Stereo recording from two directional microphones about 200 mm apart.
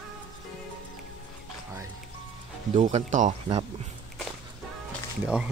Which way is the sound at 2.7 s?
35° right (ahead or behind).